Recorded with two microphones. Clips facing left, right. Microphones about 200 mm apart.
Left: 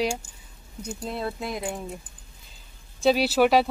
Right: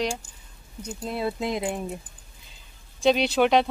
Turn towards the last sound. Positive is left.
turn(degrees=5)  # may be behind; listen again after turning